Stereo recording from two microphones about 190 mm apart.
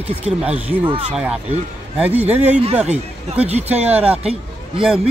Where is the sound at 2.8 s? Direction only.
35° right (ahead or behind).